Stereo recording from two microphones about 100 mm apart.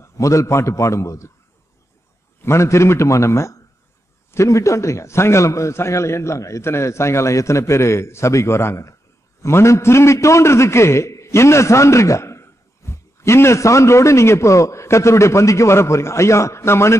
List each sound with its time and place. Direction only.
0.0 s a man's voice: 30° left (ahead or behind)
2.4 s a man's voice: 30° left (ahead or behind)